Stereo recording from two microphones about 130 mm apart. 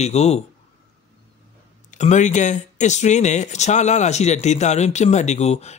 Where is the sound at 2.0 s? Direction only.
65° left (ahead or behind).